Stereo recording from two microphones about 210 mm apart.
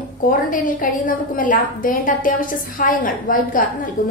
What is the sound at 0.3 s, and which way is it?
A woman's voice, 40° left (ahead or behind).